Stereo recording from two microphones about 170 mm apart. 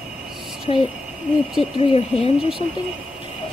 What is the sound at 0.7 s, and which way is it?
Speech, 35° left (ahead or behind).